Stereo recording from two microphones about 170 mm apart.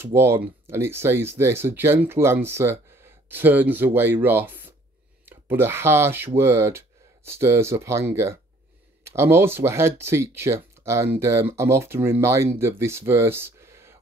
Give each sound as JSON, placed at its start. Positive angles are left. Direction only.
{"t": 0.0, "sound": "speech", "side_deg": -15}